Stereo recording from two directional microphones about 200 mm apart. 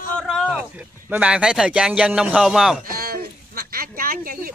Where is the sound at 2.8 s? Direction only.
50° right (ahead or behind).